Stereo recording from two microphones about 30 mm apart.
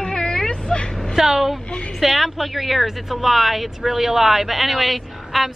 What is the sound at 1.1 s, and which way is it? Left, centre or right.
Speech, centre.